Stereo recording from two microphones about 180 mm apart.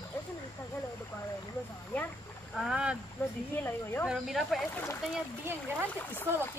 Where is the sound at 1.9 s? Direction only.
10° left (ahead or behind).